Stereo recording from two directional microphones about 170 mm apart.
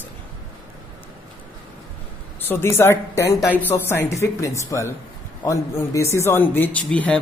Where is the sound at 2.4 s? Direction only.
15° left (ahead or behind).